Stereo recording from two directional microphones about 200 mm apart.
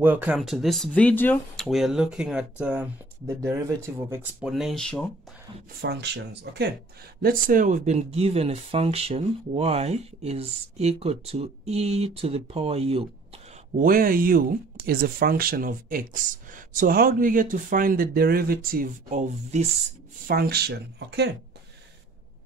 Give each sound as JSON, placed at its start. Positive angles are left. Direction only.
{"t": 0.0, "sound": "speech", "side_deg": -10}
{"t": 5.8, "sound": "speech", "side_deg": -55}
{"t": 7.2, "sound": "speech", "side_deg": -45}
{"t": 13.7, "sound": "speech", "side_deg": -45}
{"t": 20.2, "sound": "speech", "side_deg": -50}